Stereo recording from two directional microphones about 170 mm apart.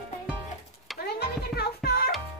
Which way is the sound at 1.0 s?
70° left (ahead or behind).